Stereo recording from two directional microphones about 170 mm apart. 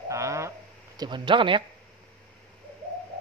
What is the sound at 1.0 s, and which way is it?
Speech, 30° right (ahead or behind).